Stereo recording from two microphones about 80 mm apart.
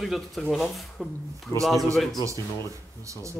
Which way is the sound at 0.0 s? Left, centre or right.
Centre.